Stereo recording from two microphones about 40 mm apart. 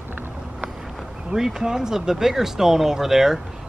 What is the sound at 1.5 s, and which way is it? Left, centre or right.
Speech, centre.